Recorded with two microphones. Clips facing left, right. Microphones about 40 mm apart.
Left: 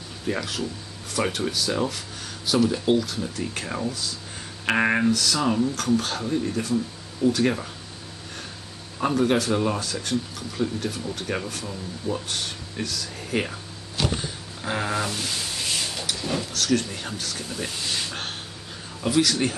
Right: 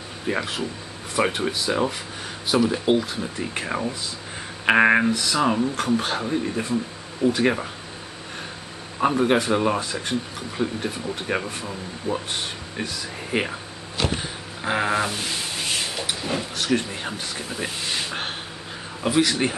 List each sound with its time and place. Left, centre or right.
0.3 s speech: right
9.0 s speech: right